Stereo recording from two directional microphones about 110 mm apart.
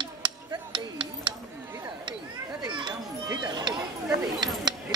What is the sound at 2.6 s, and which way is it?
Children playing, 40° right (ahead or behind).